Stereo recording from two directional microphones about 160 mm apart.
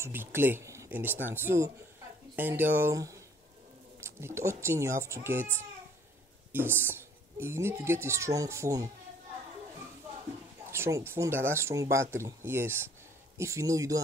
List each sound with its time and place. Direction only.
0.0 s a woman's voice: 15° right (ahead or behind)
10.7 s a woman's voice: 20° right (ahead or behind)